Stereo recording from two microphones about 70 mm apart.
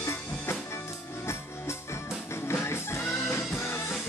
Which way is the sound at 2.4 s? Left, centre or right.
Left.